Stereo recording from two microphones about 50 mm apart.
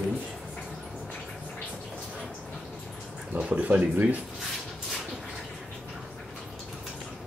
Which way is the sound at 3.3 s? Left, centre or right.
Right.